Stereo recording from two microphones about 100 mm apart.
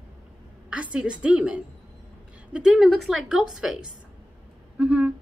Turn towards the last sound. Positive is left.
turn(degrees=-15)  # may be behind; listen again after turning